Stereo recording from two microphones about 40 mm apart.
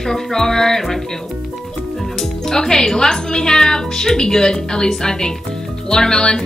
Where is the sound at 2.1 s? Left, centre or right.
Centre.